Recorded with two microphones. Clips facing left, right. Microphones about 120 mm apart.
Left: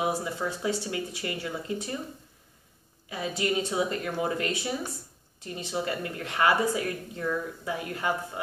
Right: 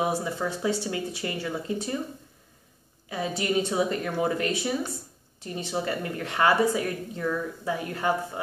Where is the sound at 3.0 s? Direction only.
30° right (ahead or behind).